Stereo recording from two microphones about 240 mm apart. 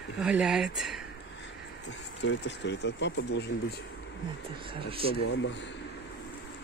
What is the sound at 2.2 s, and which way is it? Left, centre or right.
Speech, left.